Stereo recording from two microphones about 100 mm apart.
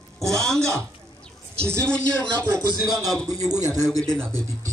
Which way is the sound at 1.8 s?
10° left (ahead or behind).